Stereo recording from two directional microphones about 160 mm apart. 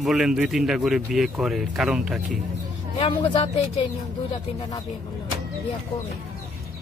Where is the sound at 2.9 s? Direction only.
35° left (ahead or behind).